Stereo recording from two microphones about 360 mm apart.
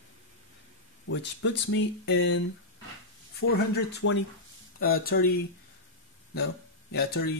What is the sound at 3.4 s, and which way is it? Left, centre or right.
Speech, left.